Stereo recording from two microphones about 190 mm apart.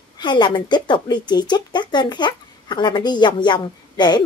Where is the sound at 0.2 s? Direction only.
25° left (ahead or behind).